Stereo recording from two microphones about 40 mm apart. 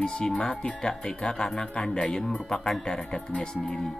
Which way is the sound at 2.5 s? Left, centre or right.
Centre.